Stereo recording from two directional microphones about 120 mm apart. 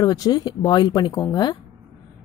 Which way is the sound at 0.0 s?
35° left (ahead or behind).